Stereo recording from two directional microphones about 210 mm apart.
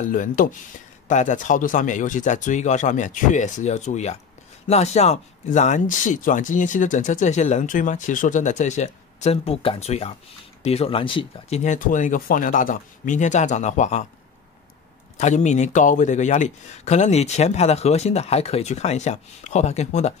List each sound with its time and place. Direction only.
0.0 s speech: 40° left (ahead or behind)
15.1 s speech: 35° left (ahead or behind)